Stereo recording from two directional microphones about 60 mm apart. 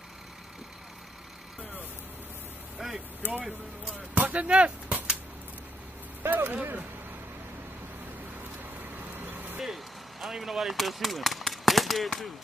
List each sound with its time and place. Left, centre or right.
2.8 s vehicle: centre
3.2 s speech: left
4.1 s speech: right
6.2 s speech: right
10.2 s speech: centre